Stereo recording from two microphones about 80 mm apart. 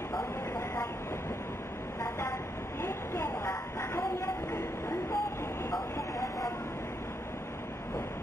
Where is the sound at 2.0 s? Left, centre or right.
Left.